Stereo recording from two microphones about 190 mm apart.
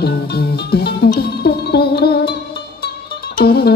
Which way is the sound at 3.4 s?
60° left (ahead or behind).